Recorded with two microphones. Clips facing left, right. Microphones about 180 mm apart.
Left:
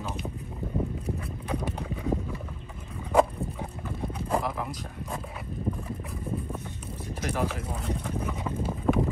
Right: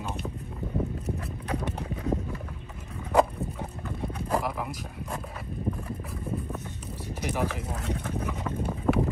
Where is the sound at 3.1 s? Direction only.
Centre (ahead or behind).